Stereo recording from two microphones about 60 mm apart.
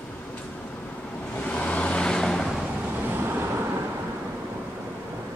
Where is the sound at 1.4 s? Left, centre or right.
Left; by 2.6 s centre.